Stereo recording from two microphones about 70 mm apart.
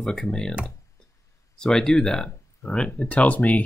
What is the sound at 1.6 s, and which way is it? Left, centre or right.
Speech, centre.